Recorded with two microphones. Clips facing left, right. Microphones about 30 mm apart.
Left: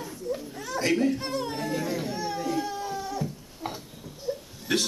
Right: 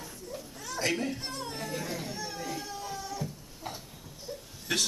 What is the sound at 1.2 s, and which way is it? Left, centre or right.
Children playing, centre.